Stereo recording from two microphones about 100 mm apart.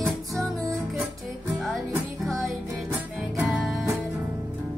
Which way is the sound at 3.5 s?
Centre (ahead or behind).